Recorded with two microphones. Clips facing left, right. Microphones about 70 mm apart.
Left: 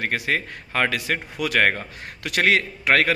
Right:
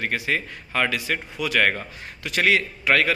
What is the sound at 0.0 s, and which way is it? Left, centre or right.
A man's voice, left.